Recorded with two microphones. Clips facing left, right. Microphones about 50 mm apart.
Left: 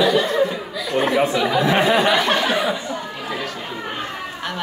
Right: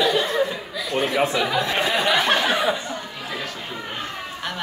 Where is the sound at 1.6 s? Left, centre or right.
Centre.